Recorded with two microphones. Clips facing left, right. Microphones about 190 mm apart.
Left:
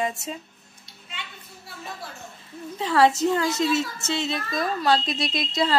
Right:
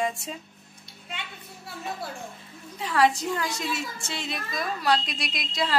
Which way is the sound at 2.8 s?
25° left (ahead or behind).